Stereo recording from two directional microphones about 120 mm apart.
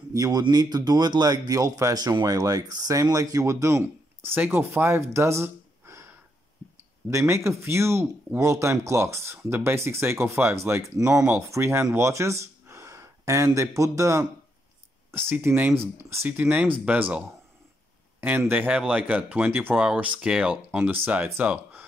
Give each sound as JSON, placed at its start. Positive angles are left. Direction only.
{"t": 0.1, "sound": "speech", "side_deg": -30}
{"t": 7.1, "sound": "speech", "side_deg": -25}
{"t": 18.2, "sound": "speech", "side_deg": -15}